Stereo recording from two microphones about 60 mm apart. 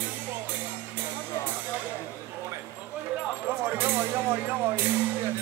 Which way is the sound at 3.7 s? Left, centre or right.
Right.